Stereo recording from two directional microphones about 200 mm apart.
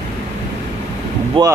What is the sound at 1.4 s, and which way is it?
Speech, 25° right (ahead or behind).